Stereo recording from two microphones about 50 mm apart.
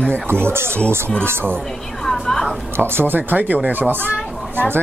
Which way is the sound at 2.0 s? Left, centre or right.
Centre.